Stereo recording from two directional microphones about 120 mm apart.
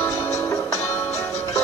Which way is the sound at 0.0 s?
20° left (ahead or behind).